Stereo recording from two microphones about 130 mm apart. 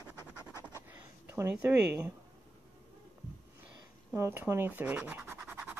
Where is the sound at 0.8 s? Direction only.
20° right (ahead or behind).